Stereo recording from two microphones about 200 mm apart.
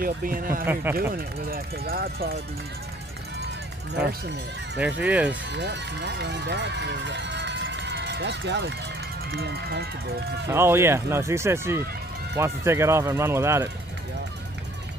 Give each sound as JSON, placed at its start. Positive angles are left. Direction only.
{"t": 0.0, "sound": "speech", "side_deg": -45}
{"t": 4.7, "sound": "speech", "side_deg": -5}
{"t": 5.5, "sound": "speech", "side_deg": -60}
{"t": 10.5, "sound": "speech", "side_deg": -10}